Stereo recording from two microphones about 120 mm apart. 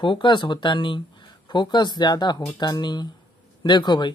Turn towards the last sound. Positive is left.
turn(degrees=40)  # may be behind; listen again after turning